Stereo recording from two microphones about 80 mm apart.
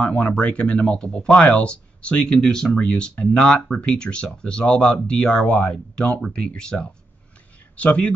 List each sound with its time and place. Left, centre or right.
0.0 s speech: centre